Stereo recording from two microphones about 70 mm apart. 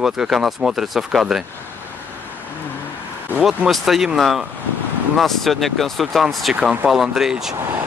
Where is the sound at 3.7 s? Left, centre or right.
Centre.